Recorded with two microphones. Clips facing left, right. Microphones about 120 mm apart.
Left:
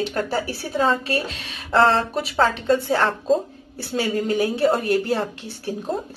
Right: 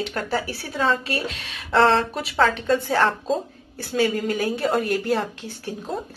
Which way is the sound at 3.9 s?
25° left (ahead or behind).